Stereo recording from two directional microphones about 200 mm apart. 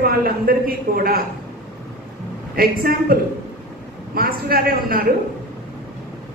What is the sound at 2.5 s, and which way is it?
A man's voice, 45° right (ahead or behind).